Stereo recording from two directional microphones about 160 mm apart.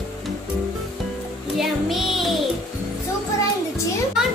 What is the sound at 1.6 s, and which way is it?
Music, centre (ahead or behind).